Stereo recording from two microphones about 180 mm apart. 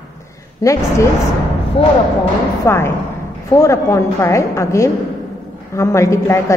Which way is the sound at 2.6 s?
15° left (ahead or behind).